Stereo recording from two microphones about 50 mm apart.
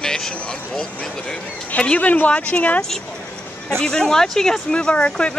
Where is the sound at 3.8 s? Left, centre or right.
Centre.